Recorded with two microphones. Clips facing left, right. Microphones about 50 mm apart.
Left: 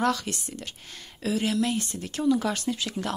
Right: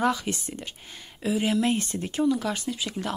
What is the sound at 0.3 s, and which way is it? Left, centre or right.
A woman's voice, right.